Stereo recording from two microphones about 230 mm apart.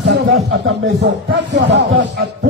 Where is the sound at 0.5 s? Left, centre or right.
Right.